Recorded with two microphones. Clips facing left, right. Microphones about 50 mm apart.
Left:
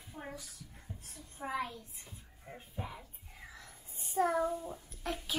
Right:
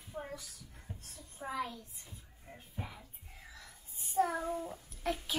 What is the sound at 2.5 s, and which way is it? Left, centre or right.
Music, centre.